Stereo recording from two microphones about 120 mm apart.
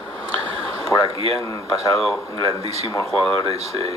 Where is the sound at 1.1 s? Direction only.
55° right (ahead or behind).